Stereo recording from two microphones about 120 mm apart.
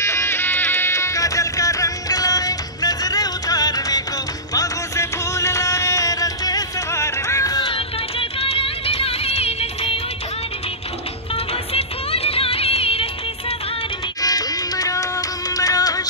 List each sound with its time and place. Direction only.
0.0 s music: 20° left (ahead or behind)
7.6 s music: 50° left (ahead or behind)
11.3 s music: 55° left (ahead or behind)
14.2 s music: 30° left (ahead or behind)